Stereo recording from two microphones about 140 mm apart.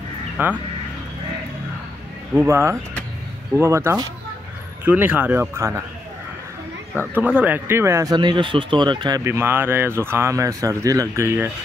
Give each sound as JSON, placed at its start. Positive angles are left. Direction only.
{"t": 0.4, "sound": "a man's voice", "side_deg": -10}
{"t": 2.3, "sound": "a man's voice", "side_deg": -20}
{"t": 7.2, "sound": "speech", "side_deg": -10}
{"t": 9.2, "sound": "speech", "side_deg": -15}